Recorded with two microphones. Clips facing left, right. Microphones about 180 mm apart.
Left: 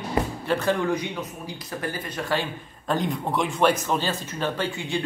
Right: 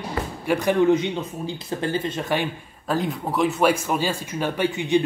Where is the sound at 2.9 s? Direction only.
Centre (ahead or behind); by 5.0 s 20° right (ahead or behind).